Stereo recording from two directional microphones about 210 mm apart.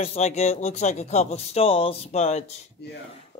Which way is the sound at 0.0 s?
30° left (ahead or behind).